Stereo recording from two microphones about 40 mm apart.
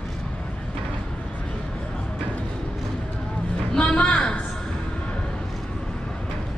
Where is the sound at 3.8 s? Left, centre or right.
Left.